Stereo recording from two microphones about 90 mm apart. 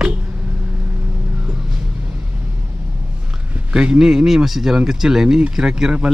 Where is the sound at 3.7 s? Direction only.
10° right (ahead or behind).